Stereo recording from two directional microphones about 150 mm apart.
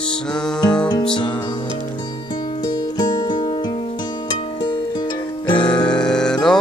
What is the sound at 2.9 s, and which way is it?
Music, 25° left (ahead or behind).